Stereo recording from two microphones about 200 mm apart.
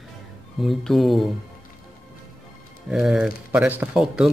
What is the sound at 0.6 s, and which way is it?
Speech, centre (ahead or behind).